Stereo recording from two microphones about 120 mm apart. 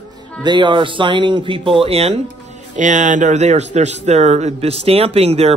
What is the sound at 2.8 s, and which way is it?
A man's voice, 90° right.